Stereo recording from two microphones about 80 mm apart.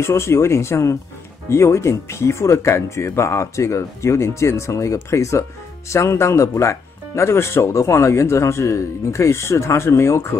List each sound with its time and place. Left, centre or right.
0.0 s speech: left